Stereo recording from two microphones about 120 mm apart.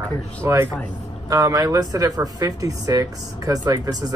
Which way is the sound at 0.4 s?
25° right (ahead or behind).